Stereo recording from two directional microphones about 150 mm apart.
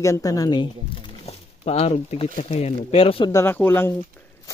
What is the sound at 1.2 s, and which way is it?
Speech, 45° left (ahead or behind).